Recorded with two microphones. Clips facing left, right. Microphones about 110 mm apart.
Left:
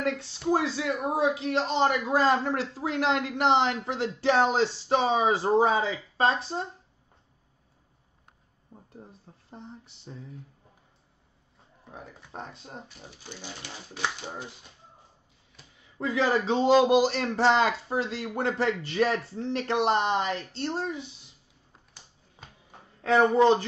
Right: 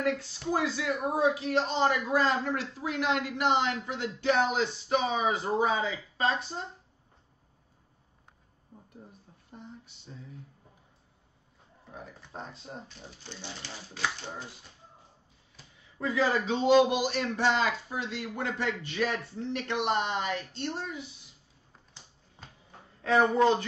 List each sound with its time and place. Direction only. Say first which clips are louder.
0.5 s speech: left 3 dB; 30° left (ahead or behind)
2.8 s speech: left 3 dB; 90° left
3.3 s speech: left 5 dB; 30° left (ahead or behind)
11.9 s speech: left 1 dB; 25° left (ahead or behind)
12.8 s speech: left 1 dB; 10° left (ahead or behind)
16.0 s speech: left 2 dB; 25° left (ahead or behind)
22.7 s a sound: left 3 dB; 25° left (ahead or behind)